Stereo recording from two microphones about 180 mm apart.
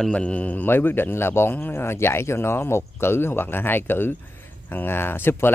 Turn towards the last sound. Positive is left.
turn(degrees=10)  # may be behind; listen again after turning